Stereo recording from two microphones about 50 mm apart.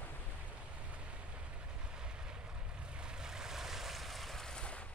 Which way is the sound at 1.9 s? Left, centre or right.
Centre.